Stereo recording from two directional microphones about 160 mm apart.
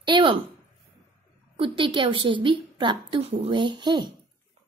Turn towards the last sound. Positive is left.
turn(degrees=-25)  # may be behind; listen again after turning